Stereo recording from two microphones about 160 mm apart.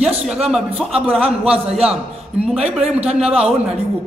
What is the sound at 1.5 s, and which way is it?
Speech, 40° right (ahead or behind).